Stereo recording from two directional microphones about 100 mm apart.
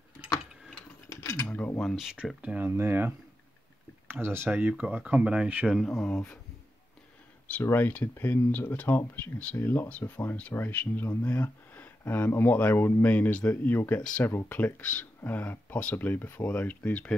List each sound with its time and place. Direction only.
1.2 s cutlery: 30° left (ahead or behind)
1.5 s a sound: 15° left (ahead or behind)
1.8 s speech: centre (ahead or behind); by 3.1 s 25° right (ahead or behind)
4.1 s speech: 25° right (ahead or behind)
5.7 s speech: centre (ahead or behind)
7.6 s speech: 20° left (ahead or behind)